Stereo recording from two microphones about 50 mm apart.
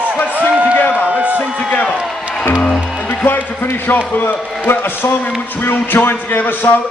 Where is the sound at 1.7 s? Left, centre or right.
Left.